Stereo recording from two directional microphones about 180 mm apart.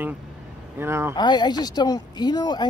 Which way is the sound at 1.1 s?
25° left (ahead or behind).